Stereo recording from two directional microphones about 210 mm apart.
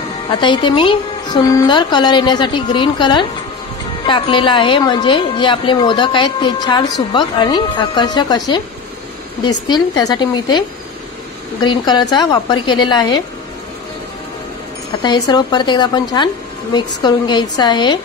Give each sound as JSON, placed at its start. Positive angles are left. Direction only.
{"t": 0.3, "sound": "a woman's voice", "side_deg": 25}
{"t": 9.7, "sound": "a woman's voice", "side_deg": 20}
{"t": 11.6, "sound": "a woman's voice", "side_deg": 20}
{"t": 15.0, "sound": "a woman's voice", "side_deg": 20}